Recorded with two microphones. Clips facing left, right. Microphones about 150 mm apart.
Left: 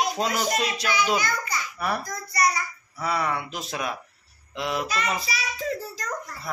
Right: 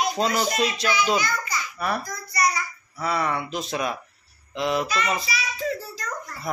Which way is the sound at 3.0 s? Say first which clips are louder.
Right 1 dB; 5° left (ahead or behind).